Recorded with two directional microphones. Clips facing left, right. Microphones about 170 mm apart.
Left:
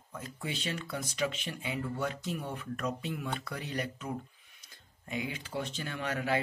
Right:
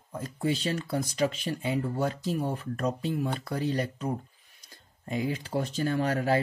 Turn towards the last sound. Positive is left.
turn(degrees=-35)  # may be behind; listen again after turning